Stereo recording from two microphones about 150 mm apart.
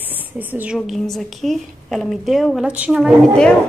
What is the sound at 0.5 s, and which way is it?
Speech, 10° right (ahead or behind).